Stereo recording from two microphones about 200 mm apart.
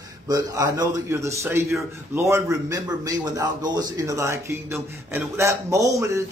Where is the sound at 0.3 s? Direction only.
15° right (ahead or behind).